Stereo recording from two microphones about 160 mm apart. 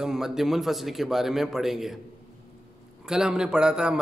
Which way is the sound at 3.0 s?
5° right (ahead or behind).